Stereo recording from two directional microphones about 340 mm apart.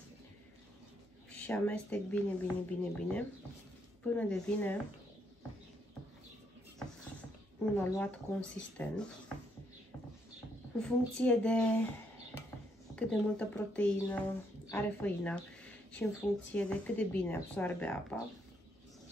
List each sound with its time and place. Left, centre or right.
1.3 s speech: centre
7.7 s speech: centre
10.8 s speech: centre
12.9 s speech: centre